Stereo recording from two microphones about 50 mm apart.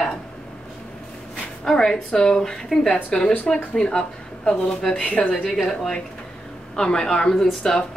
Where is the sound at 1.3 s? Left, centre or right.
Centre.